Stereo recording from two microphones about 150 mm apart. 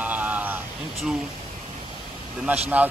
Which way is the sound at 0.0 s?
10° right (ahead or behind).